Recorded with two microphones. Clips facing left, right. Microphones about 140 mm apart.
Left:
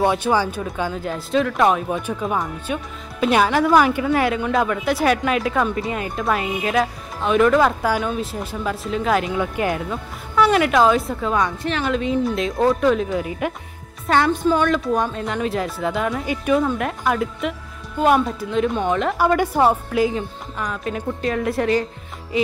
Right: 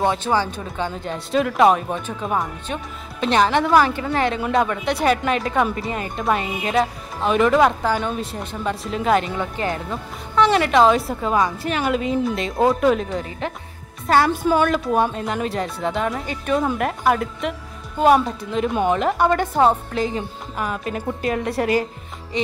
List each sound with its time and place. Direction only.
0.0 s speech: 10° left (ahead or behind)
14.0 s speech: 5° right (ahead or behind)
20.5 s speech: 5° right (ahead or behind)